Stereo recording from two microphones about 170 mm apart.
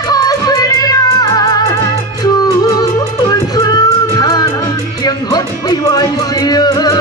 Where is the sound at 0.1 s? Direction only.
20° left (ahead or behind).